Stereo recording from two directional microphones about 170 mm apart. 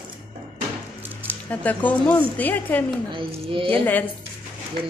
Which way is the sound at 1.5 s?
10° left (ahead or behind).